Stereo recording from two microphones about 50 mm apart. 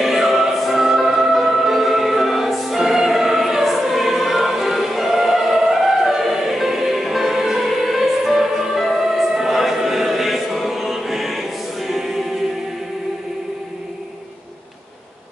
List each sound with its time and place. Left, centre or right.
0.0 s music: centre